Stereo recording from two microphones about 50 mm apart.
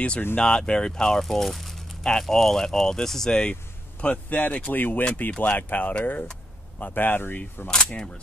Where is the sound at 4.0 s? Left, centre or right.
Left.